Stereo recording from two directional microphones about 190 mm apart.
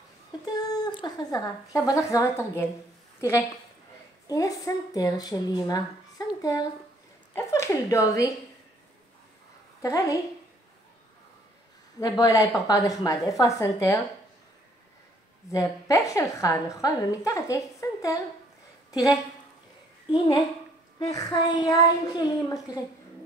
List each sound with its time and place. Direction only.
0.5 s a sound: 20° left (ahead or behind)
1.0 s a woman's voice: 20° left (ahead or behind)
9.8 s a woman's voice: 15° left (ahead or behind)
12.0 s speech: 20° left (ahead or behind)
15.5 s a woman's voice: 20° left (ahead or behind)
21.0 s speech: 20° left (ahead or behind)